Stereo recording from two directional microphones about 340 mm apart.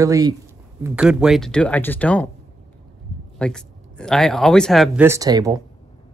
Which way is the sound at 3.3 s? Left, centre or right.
Centre.